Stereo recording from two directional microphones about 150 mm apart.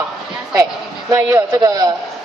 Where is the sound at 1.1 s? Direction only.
20° right (ahead or behind).